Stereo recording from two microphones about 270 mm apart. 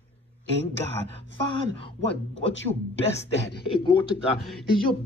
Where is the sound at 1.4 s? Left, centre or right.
Centre.